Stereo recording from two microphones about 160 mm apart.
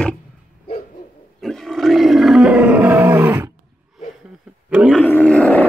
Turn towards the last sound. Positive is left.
turn(degrees=5)  # may be behind; listen again after turning